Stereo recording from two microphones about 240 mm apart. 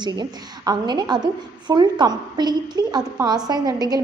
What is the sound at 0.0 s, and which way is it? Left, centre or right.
A woman's voice, centre.